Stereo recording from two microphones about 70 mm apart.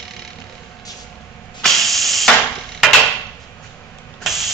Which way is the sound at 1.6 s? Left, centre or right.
Centre.